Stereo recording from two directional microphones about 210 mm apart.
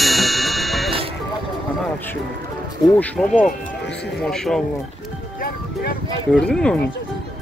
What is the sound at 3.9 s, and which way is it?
Music, 55° left (ahead or behind).